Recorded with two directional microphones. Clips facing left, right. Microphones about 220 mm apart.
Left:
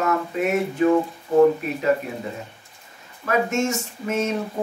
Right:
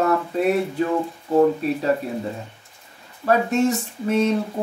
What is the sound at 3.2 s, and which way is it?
Speech, 35° right (ahead or behind).